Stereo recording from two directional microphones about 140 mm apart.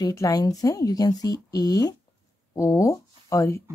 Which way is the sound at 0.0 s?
25° left (ahead or behind).